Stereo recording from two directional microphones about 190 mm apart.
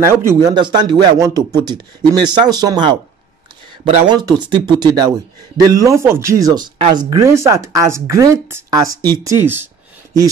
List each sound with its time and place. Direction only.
0.1 s speech: 15° right (ahead or behind)